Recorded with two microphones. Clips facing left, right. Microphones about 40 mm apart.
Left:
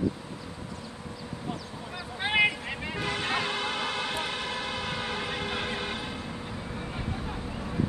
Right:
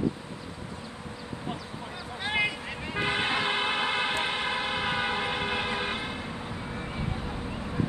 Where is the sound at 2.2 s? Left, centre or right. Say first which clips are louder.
Left 4 dB; left.